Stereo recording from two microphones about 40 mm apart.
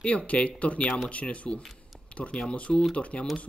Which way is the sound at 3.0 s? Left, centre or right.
Left.